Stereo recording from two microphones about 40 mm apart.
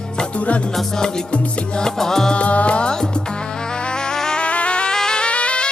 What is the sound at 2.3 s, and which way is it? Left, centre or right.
Music, left.